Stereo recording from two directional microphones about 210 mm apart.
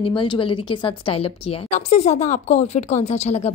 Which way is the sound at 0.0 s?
25° left (ahead or behind).